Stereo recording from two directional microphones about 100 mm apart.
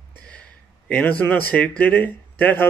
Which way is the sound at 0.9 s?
15° left (ahead or behind).